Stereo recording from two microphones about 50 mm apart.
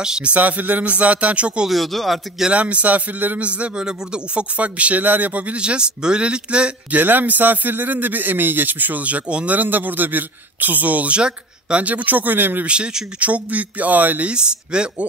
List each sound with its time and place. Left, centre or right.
0.0 s a man's voice: centre
0.3 s speech: right
1.7 s speech: centre
2.5 s a man's voice: right
6.9 s a man's voice: right
9.6 s a man's voice: right
12.6 s speech: right
14.3 s speech: centre